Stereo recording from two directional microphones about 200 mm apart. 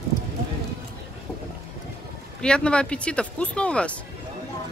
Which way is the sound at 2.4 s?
5° left (ahead or behind).